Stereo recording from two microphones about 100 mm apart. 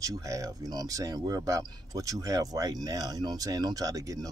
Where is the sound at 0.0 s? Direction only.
35° right (ahead or behind).